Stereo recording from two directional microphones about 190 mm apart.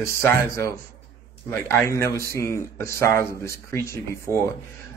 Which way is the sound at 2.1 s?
15° left (ahead or behind).